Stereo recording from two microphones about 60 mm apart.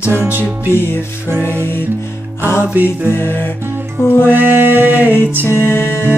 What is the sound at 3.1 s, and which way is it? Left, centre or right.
Music, left.